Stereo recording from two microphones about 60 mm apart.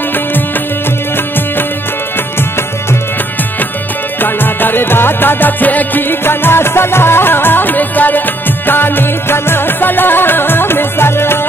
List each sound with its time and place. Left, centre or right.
4.2 s music: left